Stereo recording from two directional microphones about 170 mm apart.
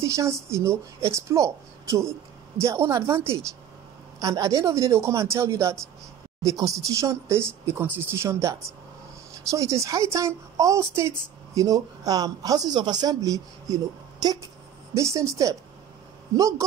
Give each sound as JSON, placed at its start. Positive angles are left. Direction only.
{"t": 0.0, "sound": "a woman's voice", "side_deg": -15}